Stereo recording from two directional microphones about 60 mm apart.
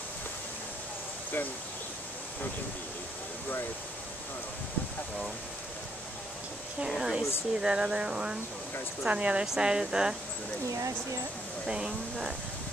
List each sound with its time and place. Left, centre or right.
7.0 s speech: centre
11.6 s speech: centre